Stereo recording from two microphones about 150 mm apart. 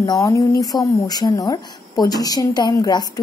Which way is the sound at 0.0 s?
25° left (ahead or behind).